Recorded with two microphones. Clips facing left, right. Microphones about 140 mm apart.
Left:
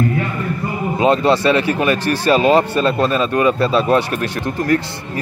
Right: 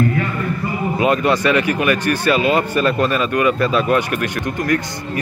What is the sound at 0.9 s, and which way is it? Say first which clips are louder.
Speech: left 3 dB; 30° left (ahead or behind).